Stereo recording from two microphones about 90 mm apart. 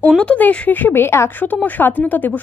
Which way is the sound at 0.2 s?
15° left (ahead or behind).